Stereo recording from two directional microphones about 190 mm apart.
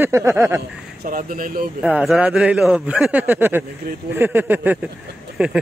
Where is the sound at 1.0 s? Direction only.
45° right (ahead or behind).